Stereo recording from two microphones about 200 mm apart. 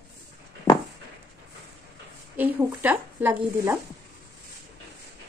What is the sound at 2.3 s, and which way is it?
Speech, 10° right (ahead or behind).